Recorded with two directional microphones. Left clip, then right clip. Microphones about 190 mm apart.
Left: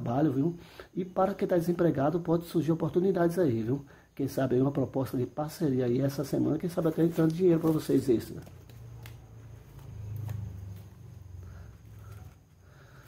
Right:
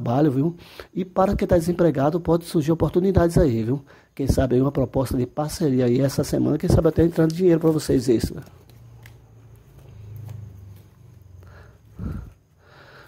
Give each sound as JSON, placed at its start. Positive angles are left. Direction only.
{"t": 0.0, "sound": "speech", "side_deg": -35}